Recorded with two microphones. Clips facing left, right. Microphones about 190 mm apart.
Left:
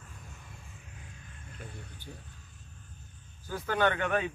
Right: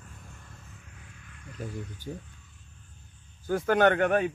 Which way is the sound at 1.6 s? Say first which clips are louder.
Right 10 dB; 40° right (ahead or behind).